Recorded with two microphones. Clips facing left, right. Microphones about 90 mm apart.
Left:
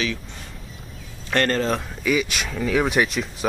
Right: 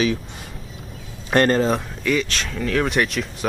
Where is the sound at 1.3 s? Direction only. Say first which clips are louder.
Right 4 dB; 20° right (ahead or behind).